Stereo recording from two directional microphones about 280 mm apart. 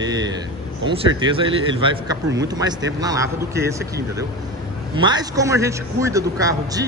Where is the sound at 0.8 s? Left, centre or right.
Centre.